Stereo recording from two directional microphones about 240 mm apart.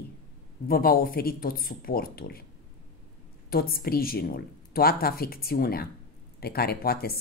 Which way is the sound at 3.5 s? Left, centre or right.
Left.